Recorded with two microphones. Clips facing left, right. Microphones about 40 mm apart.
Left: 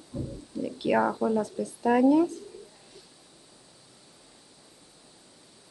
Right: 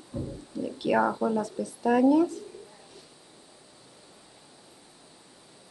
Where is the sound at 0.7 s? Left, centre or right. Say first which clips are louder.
Even; centre.